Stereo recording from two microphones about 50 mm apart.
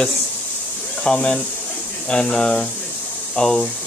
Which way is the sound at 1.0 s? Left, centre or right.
Centre.